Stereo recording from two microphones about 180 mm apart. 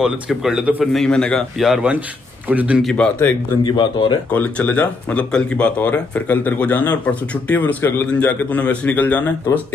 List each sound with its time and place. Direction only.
0.0 s a man's voice: 5° right (ahead or behind)
1.0 s a man's voice: 5° left (ahead or behind)
2.9 s speech: 5° left (ahead or behind)
3.6 s speech: 25° left (ahead or behind)
4.3 s speech: 10° left (ahead or behind)